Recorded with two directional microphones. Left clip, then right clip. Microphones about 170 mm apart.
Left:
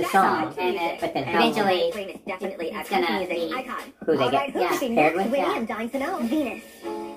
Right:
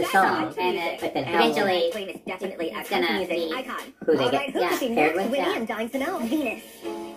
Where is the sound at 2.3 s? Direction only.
35° right (ahead or behind).